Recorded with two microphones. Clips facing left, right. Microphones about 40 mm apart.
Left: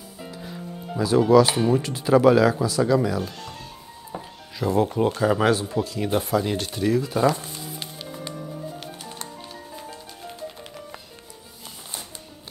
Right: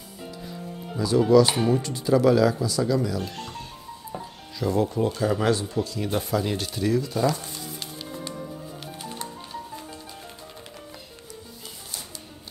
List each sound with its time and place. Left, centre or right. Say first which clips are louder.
0.9 s speech: left 2 dB; left
1.4 s speech: left 1 dB; centre
1.7 s speech: left 2 dB; left
2.0 s speech: left 3 dB; left
4.1 s music: left 1 dB; centre
4.8 s speech: left 3 dB; left
7.0 s music: left 3 dB; left
9.1 s music: right 2 dB; centre